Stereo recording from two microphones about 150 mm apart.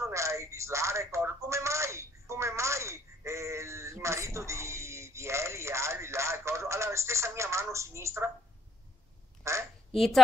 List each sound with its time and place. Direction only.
0.0 s telephone: 20° right (ahead or behind)
9.4 s quack: 20° right (ahead or behind)
9.9 s a woman's voice: centre (ahead or behind)